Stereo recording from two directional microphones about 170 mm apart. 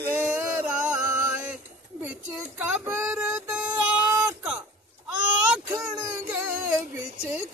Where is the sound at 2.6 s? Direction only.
10° right (ahead or behind).